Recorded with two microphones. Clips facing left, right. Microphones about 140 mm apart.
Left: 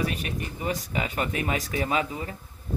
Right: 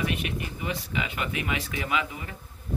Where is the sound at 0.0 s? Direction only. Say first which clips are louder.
Even; 35° left (ahead or behind).